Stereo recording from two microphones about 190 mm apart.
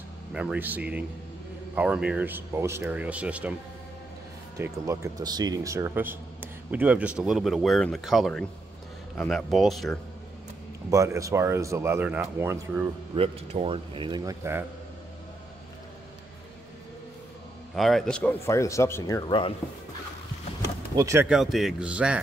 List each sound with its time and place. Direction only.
0.3 s speech: 5° right (ahead or behind)
4.6 s speech: 15° right (ahead or behind); by 9.9 s centre (ahead or behind)
10.9 s speech: 15° right (ahead or behind)
13.1 s a man's voice: 30° right (ahead or behind); by 14.7 s 15° right (ahead or behind)
17.7 s speech: centre (ahead or behind); by 19.5 s 25° left (ahead or behind)
20.9 s speech: 15° right (ahead or behind)
21.3 s speech: centre (ahead or behind)